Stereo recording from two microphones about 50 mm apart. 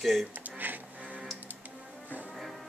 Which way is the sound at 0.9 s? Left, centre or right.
Right.